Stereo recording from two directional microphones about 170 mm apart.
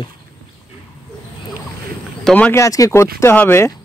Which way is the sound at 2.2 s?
10° left (ahead or behind).